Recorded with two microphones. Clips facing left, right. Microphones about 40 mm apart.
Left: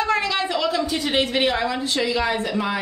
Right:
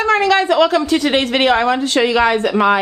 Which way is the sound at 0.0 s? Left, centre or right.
Right.